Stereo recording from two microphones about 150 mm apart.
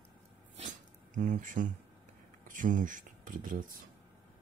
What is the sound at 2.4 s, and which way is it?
Speech, 60° right (ahead or behind).